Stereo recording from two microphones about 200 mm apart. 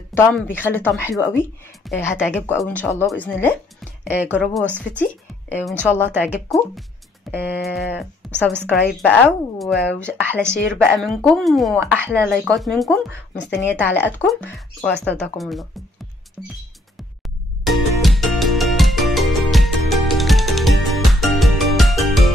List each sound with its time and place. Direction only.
0.1 s speech: 10° left (ahead or behind)
4.0 s speech: 10° right (ahead or behind)
5.7 s speech: 10° left (ahead or behind)
6.1 s speech: 5° right (ahead or behind)
8.5 s a woman's voice: 60° left (ahead or behind)
9.0 s speech: 10° left (ahead or behind)
11.8 s speech: 10° right (ahead or behind)
12.1 s speech: 5° left (ahead or behind)
17.6 s music: centre (ahead or behind)